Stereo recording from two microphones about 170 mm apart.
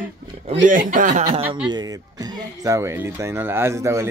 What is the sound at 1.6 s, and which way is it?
Speech, 25° right (ahead or behind).